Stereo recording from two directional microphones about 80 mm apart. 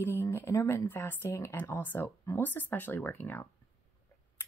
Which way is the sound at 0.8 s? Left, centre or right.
Left.